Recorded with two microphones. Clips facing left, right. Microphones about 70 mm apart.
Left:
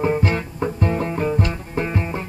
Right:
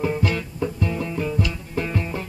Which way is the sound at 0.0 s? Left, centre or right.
Left.